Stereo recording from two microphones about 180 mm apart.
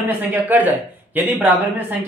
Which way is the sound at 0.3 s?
10° right (ahead or behind).